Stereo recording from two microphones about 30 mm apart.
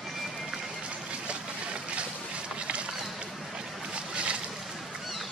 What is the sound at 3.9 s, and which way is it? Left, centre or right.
Boat, right.